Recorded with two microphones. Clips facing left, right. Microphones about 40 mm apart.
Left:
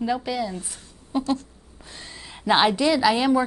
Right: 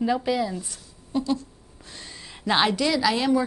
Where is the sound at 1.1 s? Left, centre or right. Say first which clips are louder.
Left 1 dB; centre.